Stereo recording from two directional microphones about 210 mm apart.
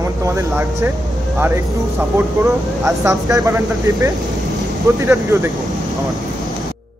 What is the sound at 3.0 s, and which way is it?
Speech, 15° right (ahead or behind).